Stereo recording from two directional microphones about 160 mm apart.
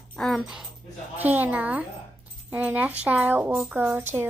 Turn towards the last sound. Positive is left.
turn(degrees=-10)  # may be behind; listen again after turning